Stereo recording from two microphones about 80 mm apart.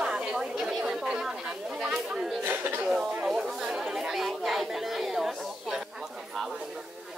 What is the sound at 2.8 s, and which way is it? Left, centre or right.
Speech, centre.